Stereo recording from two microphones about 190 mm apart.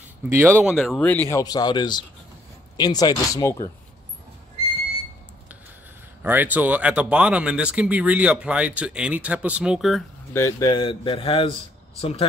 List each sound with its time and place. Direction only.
0.2 s speech: 10° right (ahead or behind); by 1.2 s 5° left (ahead or behind)
1.3 s speech: 20° left (ahead or behind)
6.2 s speech: 10° right (ahead or behind)
10.3 s speech: 15° left (ahead or behind)